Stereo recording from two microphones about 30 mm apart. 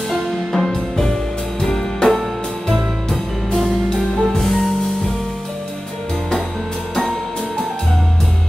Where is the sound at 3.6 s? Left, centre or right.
Left.